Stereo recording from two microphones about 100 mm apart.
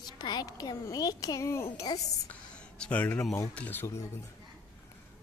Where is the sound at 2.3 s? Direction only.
15° left (ahead or behind).